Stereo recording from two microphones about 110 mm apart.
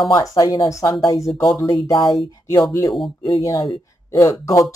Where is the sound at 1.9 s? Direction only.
45° left (ahead or behind).